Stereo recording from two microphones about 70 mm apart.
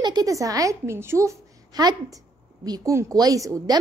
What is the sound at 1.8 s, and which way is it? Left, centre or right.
A woman's voice, right.